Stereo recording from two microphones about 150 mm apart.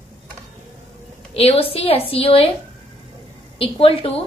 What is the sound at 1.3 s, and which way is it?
A woman's voice, 40° left (ahead or behind).